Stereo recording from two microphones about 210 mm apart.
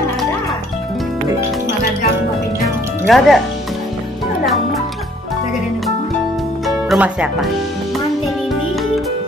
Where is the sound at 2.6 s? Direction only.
Centre (ahead or behind).